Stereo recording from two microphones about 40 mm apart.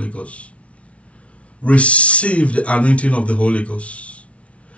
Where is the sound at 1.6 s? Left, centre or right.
Left.